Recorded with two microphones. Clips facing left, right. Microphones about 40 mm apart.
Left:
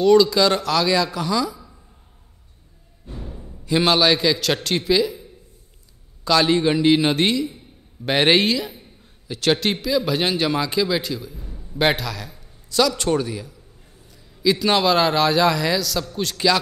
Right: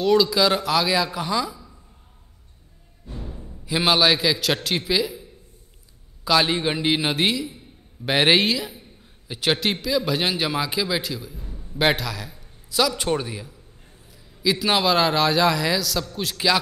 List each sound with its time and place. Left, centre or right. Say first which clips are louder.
0.0 s speech: left 4 dB; centre
3.1 s music: left 1 dB; left
3.6 s a man's voice: left 2 dB; centre
6.2 s a man's voice: left 3 dB; centre
14.1 s a man's voice: left 3 dB; centre